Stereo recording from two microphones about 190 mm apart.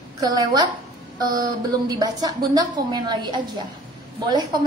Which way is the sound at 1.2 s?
20° right (ahead or behind).